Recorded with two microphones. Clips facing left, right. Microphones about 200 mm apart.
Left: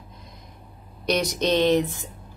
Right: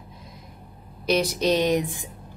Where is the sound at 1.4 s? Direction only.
10° right (ahead or behind).